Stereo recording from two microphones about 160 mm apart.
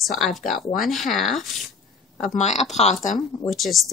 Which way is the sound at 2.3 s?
45° left (ahead or behind).